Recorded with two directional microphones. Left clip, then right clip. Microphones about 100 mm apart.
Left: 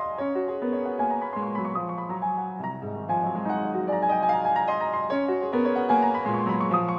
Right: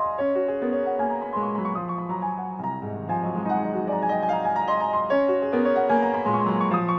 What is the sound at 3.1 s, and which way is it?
Music, 30° right (ahead or behind).